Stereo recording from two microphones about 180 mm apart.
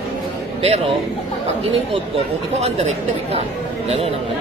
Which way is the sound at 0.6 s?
35° right (ahead or behind).